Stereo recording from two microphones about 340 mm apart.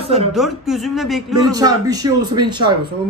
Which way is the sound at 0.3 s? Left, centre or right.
Centre.